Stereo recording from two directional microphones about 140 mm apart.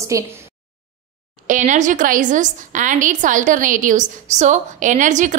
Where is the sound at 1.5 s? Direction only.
60° right (ahead or behind).